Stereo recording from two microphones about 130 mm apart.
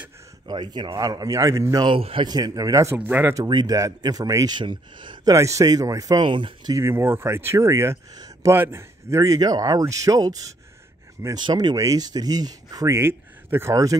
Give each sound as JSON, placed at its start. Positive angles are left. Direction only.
{"t": 0.5, "sound": "speech", "side_deg": -35}
{"t": 2.0, "sound": "a man's voice", "side_deg": -45}
{"t": 2.2, "sound": "speech", "side_deg": -30}
{"t": 3.3, "sound": "speech", "side_deg": -30}
{"t": 4.6, "sound": "speech", "side_deg": -40}
{"t": 5.3, "sound": "speech", "side_deg": -25}
{"t": 6.7, "sound": "speech", "side_deg": -20}